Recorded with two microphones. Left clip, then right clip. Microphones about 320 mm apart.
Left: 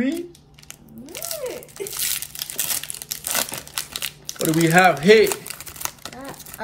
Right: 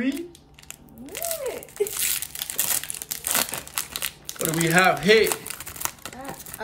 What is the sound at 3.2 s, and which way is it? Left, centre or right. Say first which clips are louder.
Crumpling: even; centre.